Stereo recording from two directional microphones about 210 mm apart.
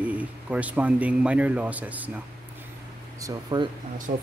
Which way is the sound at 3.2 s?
20° right (ahead or behind).